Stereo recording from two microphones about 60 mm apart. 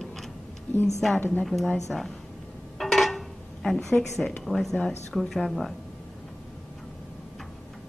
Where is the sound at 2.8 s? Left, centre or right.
Centre.